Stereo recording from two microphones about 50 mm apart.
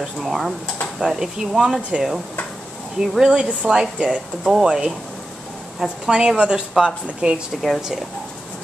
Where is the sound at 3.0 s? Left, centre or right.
Centre.